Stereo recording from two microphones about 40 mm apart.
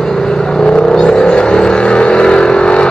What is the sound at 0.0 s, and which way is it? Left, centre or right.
Vehicle, centre.